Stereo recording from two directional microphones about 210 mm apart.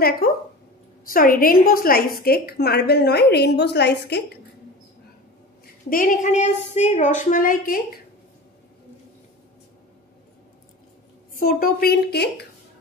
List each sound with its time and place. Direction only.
1.0 s a woman's voice: 40° left (ahead or behind)
5.9 s a woman's voice: 40° left (ahead or behind)
11.3 s a woman's voice: 45° left (ahead or behind)